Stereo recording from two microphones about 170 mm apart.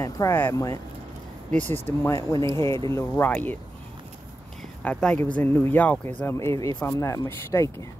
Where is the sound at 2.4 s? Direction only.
25° right (ahead or behind).